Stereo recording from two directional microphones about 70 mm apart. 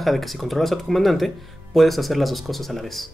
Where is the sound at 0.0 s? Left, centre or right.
Centre.